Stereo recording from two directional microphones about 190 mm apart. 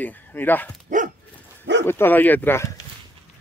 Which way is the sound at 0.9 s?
40° right (ahead or behind).